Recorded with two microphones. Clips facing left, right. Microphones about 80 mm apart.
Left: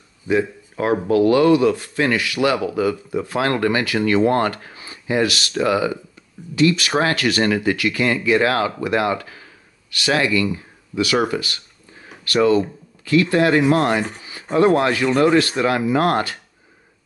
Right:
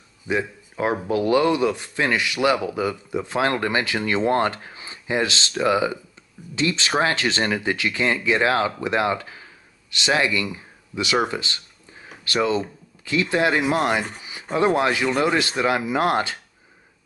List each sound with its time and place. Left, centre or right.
1.0 s speech: right